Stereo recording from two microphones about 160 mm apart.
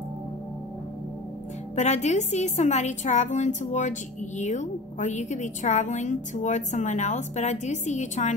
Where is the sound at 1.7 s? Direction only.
45° left (ahead or behind).